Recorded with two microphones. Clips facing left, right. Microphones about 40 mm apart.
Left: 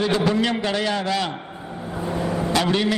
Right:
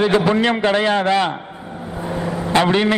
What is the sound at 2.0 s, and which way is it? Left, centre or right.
Vehicle, right.